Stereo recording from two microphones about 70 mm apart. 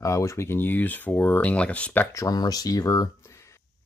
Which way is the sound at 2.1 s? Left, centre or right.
Left.